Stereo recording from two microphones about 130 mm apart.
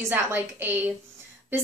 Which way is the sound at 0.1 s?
15° right (ahead or behind).